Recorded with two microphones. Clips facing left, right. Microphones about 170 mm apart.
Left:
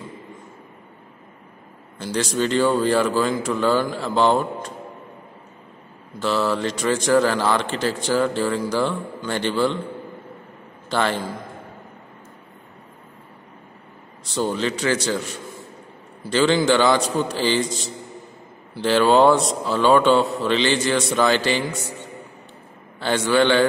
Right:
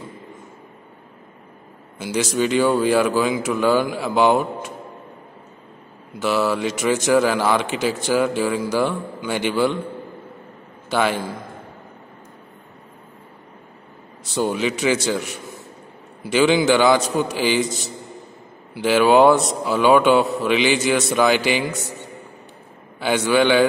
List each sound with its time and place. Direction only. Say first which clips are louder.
2.0 s speech: right 2 dB; 5° right (ahead or behind)
6.2 s speech: right 1 dB; 5° right (ahead or behind)
10.9 s a man's voice: right 2 dB; 10° right (ahead or behind)
14.3 s speech: right 2 dB; 10° right (ahead or behind)
22.9 s speech: right 1 dB; 10° right (ahead or behind)